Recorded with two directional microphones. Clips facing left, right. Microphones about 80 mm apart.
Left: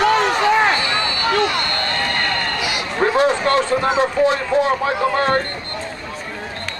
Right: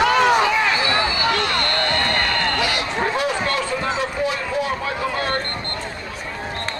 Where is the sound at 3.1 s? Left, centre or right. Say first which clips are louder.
Left 6 dB; left.